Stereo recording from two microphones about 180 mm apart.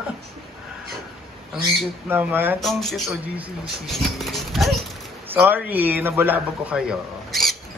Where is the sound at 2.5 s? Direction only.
Centre (ahead or behind).